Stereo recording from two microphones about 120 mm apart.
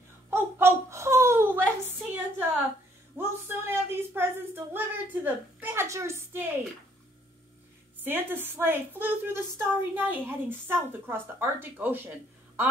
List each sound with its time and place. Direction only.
0.3 s wail: 20° right (ahead or behind)
1.9 s a sound: 15° right (ahead or behind)
8.0 s a woman's voice: 15° right (ahead or behind)